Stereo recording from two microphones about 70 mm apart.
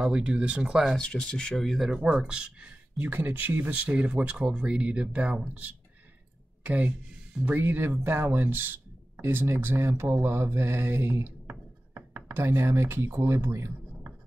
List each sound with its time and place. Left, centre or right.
0.0 s speech: centre
0.9 s speech: centre
1.6 s speech: centre
1.9 s speech: centre
3.0 s speech: right